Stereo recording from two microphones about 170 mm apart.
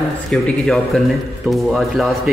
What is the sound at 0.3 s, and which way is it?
A man's voice, centre (ahead or behind).